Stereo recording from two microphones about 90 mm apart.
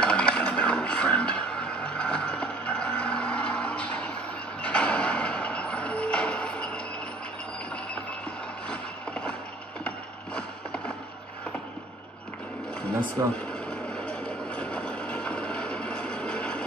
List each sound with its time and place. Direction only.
0.0 s music: 10° left (ahead or behind)
8.6 s mechanisms: 15° left (ahead or behind)
9.8 s a sound: 10° left (ahead or behind)
13.5 s vehicle: 10° left (ahead or behind)